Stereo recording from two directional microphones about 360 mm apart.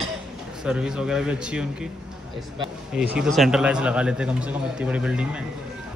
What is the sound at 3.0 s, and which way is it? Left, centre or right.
A man's voice, centre.